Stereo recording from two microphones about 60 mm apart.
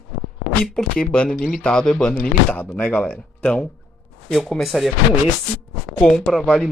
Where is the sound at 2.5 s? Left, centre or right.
Left.